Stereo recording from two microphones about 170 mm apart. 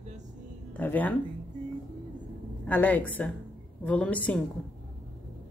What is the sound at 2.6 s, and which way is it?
A woman's voice, 10° left (ahead or behind).